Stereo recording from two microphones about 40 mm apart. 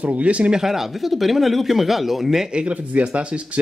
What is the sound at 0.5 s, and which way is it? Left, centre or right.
Speech, centre.